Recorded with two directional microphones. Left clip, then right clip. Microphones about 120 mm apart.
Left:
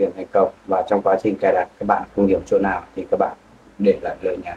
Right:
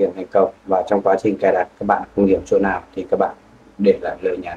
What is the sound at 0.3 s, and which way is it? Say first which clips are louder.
Speech: right 1 dB; 30° right (ahead or behind).